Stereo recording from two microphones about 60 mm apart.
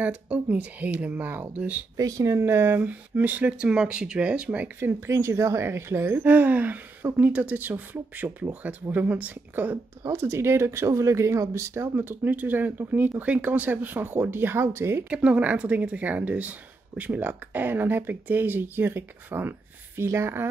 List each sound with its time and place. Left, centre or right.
0.0 s speech: right
2.0 s speech: right
2.9 s speech: right
4.7 s speech: right
5.1 s speech: right
10.0 s speech: right
12.1 s speech: right
15.0 s speech: right
20.0 s speech: right